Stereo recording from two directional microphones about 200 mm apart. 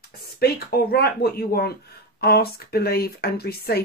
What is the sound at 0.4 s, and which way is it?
Speech, 50° left (ahead or behind).